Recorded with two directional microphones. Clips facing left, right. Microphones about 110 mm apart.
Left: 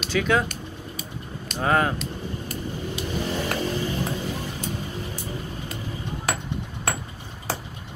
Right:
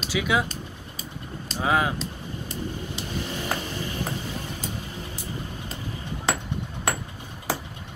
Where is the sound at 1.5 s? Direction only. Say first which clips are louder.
Left 2 dB; 5° right (ahead or behind).